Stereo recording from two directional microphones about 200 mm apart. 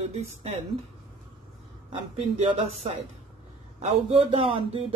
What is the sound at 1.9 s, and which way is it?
Speech, 25° right (ahead or behind).